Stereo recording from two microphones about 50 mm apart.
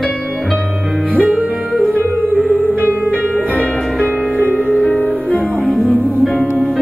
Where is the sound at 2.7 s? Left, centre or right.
Right.